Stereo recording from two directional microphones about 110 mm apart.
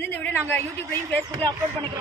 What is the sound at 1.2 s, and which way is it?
Speech, 35° right (ahead or behind).